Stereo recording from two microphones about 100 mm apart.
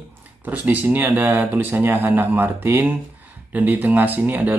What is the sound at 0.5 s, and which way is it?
Speech, 15° right (ahead or behind).